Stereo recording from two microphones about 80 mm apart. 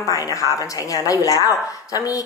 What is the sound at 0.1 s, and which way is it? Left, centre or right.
Speech, left.